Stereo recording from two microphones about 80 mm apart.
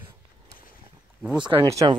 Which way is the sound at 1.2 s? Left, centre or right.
Centre.